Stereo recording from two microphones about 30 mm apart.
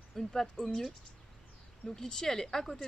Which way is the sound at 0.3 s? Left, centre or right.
Centre.